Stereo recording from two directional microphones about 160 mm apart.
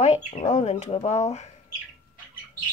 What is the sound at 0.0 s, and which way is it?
Speech, 45° left (ahead or behind).